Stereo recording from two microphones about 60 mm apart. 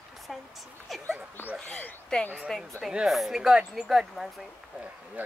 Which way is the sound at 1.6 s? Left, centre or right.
Left.